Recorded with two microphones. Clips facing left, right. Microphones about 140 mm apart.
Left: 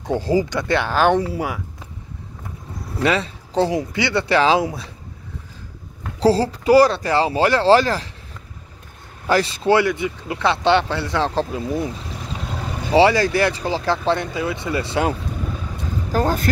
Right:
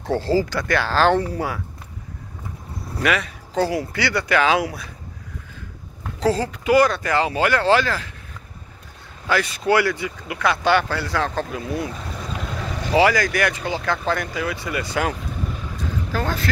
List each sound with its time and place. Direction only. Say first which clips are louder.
0.0 s speech: left 1 dB; 15° left (ahead or behind)
3.0 s speech: left 2 dB; 30° left (ahead or behind)
6.1 s speech: left 4 dB; 35° left (ahead or behind)
9.3 s speech: left 3 dB; 30° left (ahead or behind)
12.9 s speech: left 3 dB; 30° left (ahead or behind)
16.1 s speech: left 6 dB; 35° left (ahead or behind)